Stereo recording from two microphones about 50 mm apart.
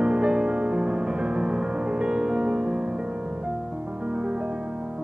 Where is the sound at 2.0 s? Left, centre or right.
Centre.